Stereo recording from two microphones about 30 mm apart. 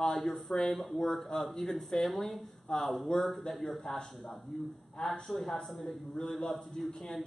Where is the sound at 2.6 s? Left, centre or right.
Centre.